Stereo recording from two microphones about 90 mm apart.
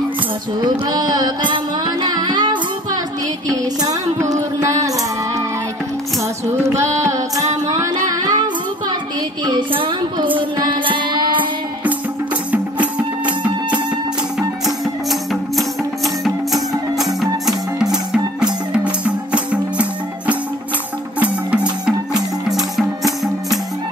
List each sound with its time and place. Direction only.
0.6 s music: 50° right (ahead or behind)
3.4 s music: 40° right (ahead or behind)
6.6 s music: 35° right (ahead or behind)
9.4 s a sound: 55° right (ahead or behind)
10.6 s carnatic music: 65° right (ahead or behind)
16.5 s music: centre (ahead or behind)
22.5 s music: centre (ahead or behind)